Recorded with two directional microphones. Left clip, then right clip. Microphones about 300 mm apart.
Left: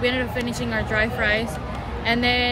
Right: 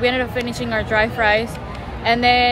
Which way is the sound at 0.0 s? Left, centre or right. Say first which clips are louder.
Right 4 dB; centre.